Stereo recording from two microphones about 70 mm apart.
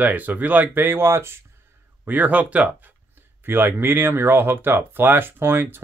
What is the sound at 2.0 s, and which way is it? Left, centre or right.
Speech, right.